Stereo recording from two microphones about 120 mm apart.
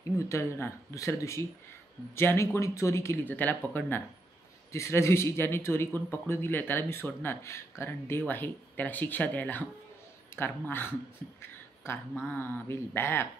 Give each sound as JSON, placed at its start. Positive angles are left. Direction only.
{"t": 0.2, "sound": "speech", "side_deg": 25}